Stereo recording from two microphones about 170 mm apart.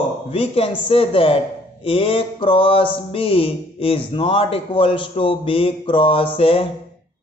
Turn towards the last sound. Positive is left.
turn(degrees=35)  # may be behind; listen again after turning